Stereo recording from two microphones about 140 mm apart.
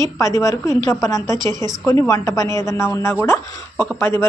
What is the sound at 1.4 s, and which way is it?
Speech, 30° right (ahead or behind).